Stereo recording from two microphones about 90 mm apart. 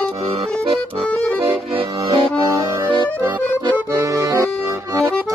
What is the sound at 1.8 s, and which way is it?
Accordion, 55° right (ahead or behind).